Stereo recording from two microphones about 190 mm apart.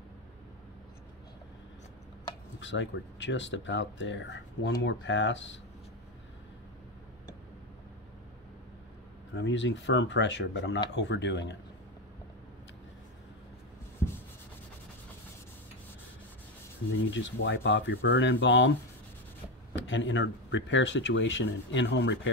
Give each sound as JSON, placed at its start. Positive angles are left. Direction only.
{"t": 2.6, "sound": "speech", "side_deg": 75}
{"t": 9.3, "sound": "speech", "side_deg": 70}
{"t": 17.1, "sound": "speech", "side_deg": 75}
{"t": 19.7, "sound": "speech", "side_deg": 75}